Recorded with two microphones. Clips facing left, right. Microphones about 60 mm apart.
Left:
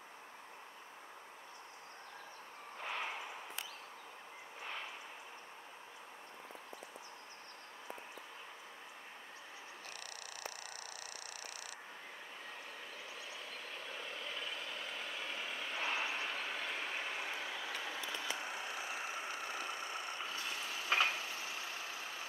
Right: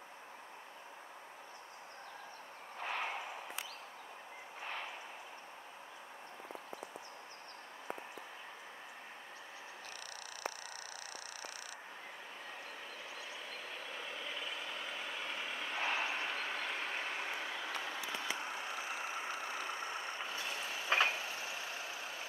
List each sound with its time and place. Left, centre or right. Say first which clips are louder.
2.8 s a sound: right 2 dB; centre
13.7 s vehicle: even; centre
18.1 s vehicle: right 1 dB; centre